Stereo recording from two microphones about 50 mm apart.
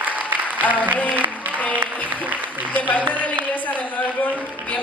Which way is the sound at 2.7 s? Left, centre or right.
Left.